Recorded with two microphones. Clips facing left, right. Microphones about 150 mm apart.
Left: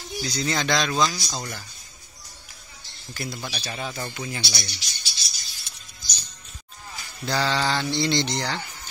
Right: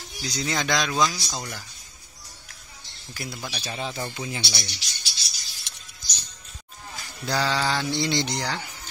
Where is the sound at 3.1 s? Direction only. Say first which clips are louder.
Left 2 dB; 10° right (ahead or behind).